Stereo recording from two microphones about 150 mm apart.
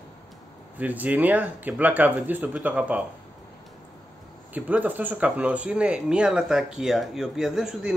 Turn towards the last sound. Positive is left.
turn(degrees=-5)  # may be behind; listen again after turning